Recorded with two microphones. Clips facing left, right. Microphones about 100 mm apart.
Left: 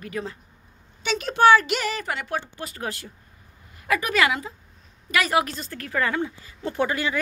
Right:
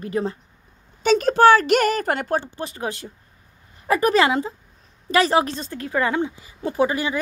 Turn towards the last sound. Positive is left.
turn(degrees=-15)  # may be behind; listen again after turning